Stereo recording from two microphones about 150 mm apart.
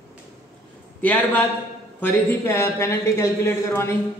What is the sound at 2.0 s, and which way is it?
Speech, 15° left (ahead or behind).